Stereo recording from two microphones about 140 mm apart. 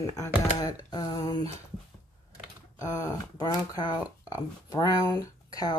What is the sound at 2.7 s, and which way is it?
Speech, 25° left (ahead or behind).